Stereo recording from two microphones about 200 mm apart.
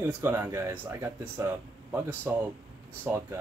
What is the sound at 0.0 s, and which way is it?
Speech, 10° right (ahead or behind).